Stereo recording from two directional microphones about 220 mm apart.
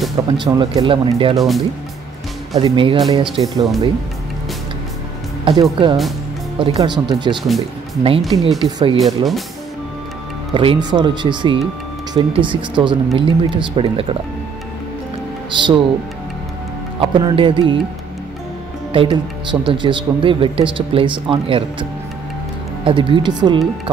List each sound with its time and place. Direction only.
0.4 s speech: 20° right (ahead or behind)
1.3 s speech: centre (ahead or behind)
2.6 s speech: 20° right (ahead or behind)
5.4 s speech: 20° right (ahead or behind)
7.4 s speech: centre (ahead or behind)
8.6 s speech: 20° right (ahead or behind)
9.0 s speech: centre (ahead or behind)
10.5 s speech: 25° right (ahead or behind)
15.5 s speech: 20° right (ahead or behind)
17.0 s speech: 25° right (ahead or behind)
18.9 s speech: 25° right (ahead or behind)
22.8 s speech: 20° right (ahead or behind)